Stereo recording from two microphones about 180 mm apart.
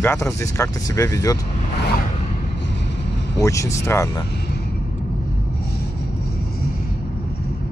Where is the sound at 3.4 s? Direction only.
15° left (ahead or behind).